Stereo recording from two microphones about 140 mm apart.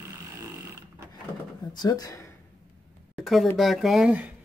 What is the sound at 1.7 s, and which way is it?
Speech, 30° left (ahead or behind).